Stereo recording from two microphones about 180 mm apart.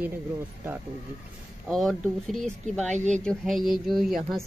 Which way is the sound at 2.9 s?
40° right (ahead or behind).